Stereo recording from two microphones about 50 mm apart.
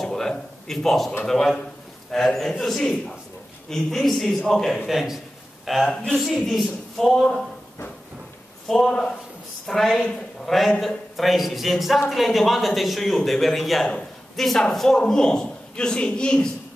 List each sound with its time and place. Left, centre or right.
0.0 s a man's voice: centre
4.8 s a man's voice: centre
8.7 s a man's voice: centre
13.8 s a sound: centre
14.6 s a man's voice: centre